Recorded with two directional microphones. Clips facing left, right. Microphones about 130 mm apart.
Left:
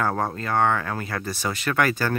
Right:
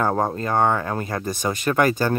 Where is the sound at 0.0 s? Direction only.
20° right (ahead or behind).